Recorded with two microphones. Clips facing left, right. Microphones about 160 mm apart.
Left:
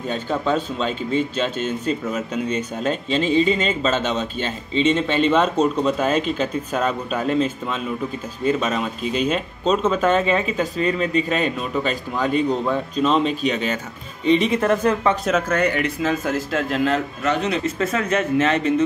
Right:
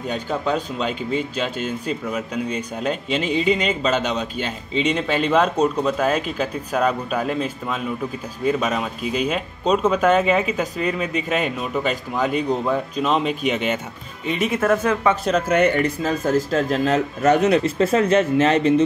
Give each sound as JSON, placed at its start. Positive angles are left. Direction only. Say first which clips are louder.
{"t": 0.1, "sound": "speech", "louder": "left 1 dB", "side_deg": -15}
{"t": 4.9, "sound": "speech", "louder": "right 2 dB", "side_deg": -5}
{"t": 14.2, "sound": "speech", "louder": "left 3 dB", "side_deg": -10}
{"t": 15.4, "sound": "speech", "louder": "right 3 dB", "side_deg": -20}
{"t": 15.8, "sound": "speech", "louder": "right 1 dB", "side_deg": -35}
{"t": 17.6, "sound": "speech", "louder": "right 4 dB", "side_deg": -30}